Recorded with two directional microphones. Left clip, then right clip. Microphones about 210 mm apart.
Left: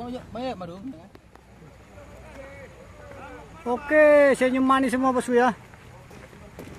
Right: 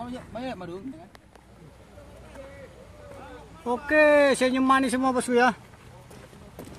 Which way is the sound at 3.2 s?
Centre (ahead or behind).